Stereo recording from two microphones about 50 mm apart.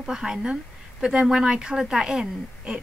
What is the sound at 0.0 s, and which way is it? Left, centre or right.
Speech, centre.